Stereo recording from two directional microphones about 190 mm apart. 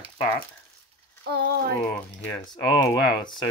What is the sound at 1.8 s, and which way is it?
Speech, 10° left (ahead or behind).